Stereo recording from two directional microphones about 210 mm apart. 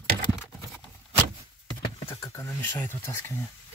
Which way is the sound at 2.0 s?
25° left (ahead or behind).